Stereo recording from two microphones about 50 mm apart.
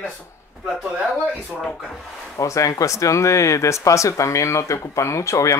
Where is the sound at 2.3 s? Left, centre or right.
Left.